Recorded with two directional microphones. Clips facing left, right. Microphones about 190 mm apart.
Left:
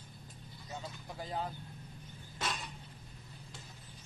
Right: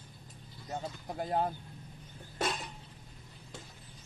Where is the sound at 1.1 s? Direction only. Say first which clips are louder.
Right 7 dB; 55° right (ahead or behind).